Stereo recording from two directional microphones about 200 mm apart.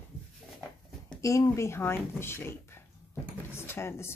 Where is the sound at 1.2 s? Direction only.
15° left (ahead or behind).